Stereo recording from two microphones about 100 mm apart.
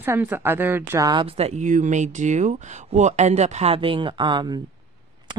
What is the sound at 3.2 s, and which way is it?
Speech, 90° right.